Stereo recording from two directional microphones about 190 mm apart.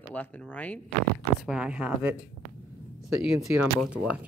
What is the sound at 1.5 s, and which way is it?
Speech, 5° right (ahead or behind).